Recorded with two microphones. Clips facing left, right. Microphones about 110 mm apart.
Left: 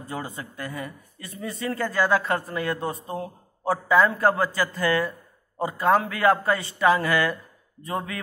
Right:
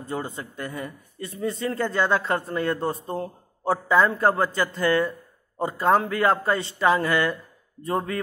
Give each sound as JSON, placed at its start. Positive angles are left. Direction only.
{"t": 0.1, "sound": "speech", "side_deg": -25}
{"t": 2.8, "sound": "a man's voice", "side_deg": 0}
{"t": 3.2, "sound": "a man's voice", "side_deg": -25}